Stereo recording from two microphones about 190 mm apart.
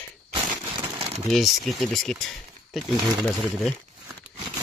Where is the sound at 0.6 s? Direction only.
25° right (ahead or behind).